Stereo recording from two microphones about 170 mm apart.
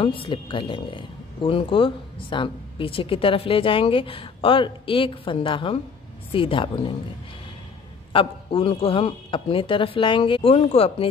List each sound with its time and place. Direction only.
0.0 s speech: 30° left (ahead or behind)
8.1 s speech: 30° left (ahead or behind)